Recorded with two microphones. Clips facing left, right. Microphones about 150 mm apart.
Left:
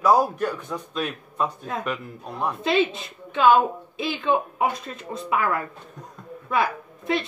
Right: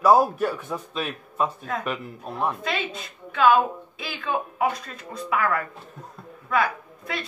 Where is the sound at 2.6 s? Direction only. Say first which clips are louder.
Left 7 dB; 25° left (ahead or behind).